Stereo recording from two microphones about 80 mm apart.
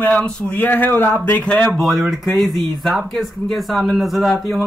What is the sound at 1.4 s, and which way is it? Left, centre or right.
Speech, centre.